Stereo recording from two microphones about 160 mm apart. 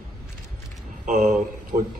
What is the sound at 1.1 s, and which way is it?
Speech, 50° right (ahead or behind).